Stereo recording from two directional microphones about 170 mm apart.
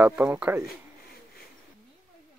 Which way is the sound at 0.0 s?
10° right (ahead or behind).